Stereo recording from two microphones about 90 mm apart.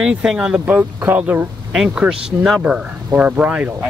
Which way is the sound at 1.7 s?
10° right (ahead or behind).